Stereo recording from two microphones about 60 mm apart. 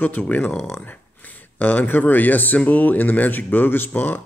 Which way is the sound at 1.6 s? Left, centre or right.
Left.